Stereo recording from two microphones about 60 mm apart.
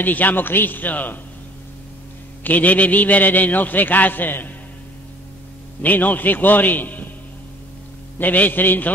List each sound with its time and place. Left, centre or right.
0.0 s a man's voice: left
2.4 s a man's voice: left
5.8 s a man's voice: left
8.2 s a man's voice: left